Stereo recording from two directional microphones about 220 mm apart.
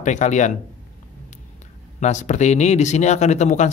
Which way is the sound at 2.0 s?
35° left (ahead or behind).